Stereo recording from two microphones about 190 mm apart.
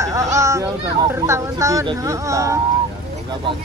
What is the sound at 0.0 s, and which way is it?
Speech, 15° right (ahead or behind).